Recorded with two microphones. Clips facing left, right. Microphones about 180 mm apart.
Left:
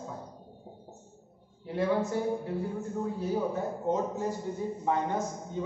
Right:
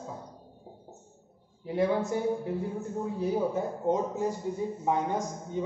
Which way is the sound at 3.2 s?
15° right (ahead or behind).